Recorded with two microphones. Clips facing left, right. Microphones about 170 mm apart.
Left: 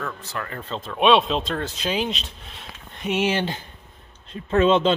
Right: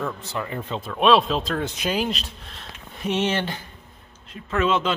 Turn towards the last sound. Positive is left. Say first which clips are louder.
# left 5 dB
turn(degrees=30)  # may be behind; listen again after turning